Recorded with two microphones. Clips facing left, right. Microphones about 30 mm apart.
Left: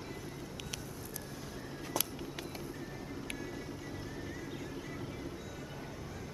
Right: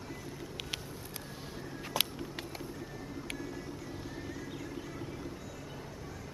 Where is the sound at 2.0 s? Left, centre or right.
Right.